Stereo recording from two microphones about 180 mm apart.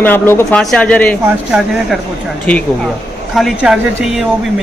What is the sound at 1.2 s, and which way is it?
Speech, 5° right (ahead or behind).